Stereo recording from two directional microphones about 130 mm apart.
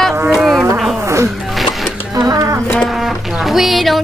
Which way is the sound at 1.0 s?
20° right (ahead or behind).